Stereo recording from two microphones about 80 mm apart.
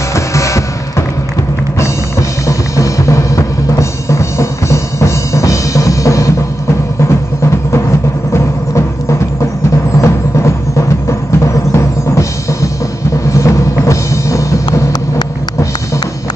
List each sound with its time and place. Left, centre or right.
0.1 s music: left
9.9 s music: left
13.3 s music: left